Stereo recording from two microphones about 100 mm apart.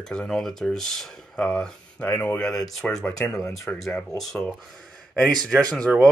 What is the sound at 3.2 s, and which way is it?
Speech, 30° left (ahead or behind).